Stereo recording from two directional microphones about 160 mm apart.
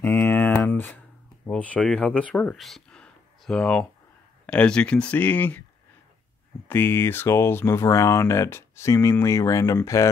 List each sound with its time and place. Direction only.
0.0 s a sound: 15° left (ahead or behind)
1.5 s speech: 5° left (ahead or behind)
6.7 s speech: 15° left (ahead or behind)